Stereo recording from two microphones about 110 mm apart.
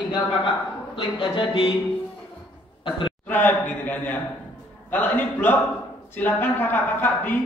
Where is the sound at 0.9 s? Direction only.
50° left (ahead or behind).